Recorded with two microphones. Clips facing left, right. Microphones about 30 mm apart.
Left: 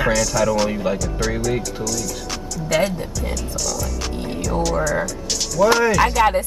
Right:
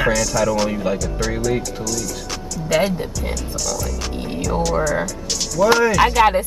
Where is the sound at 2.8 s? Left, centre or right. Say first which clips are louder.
Right 2 dB; centre.